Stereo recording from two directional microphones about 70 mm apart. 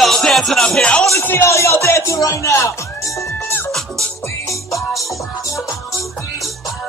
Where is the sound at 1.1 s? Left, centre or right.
Left.